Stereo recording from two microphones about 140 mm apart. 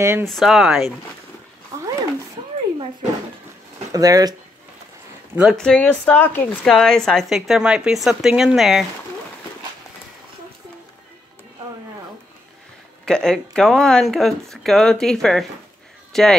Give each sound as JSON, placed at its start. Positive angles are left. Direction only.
{"t": 0.0, "sound": "speech", "side_deg": -20}
{"t": 0.3, "sound": "a woman's voice", "side_deg": 0}
{"t": 1.7, "sound": "a sound", "side_deg": -20}
{"t": 3.9, "sound": "speech", "side_deg": -25}
{"t": 5.3, "sound": "speech", "side_deg": -5}
{"t": 5.6, "sound": "a woman's voice", "side_deg": 5}
{"t": 13.0, "sound": "a woman's voice", "side_deg": 5}